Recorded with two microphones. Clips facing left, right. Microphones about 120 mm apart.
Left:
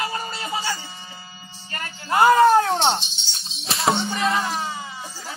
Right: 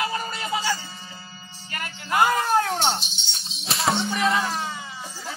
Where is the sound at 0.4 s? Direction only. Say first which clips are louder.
Right 1 dB; 15° left (ahead or behind).